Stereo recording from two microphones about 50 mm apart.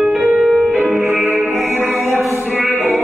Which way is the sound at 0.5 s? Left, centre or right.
Centre.